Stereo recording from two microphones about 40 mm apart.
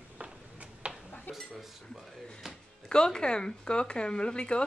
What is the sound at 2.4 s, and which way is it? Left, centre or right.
Music, centre.